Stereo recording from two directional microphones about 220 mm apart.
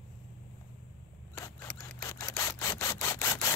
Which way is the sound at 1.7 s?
5° left (ahead or behind).